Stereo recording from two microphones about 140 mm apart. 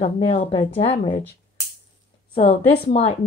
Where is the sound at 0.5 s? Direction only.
40° left (ahead or behind).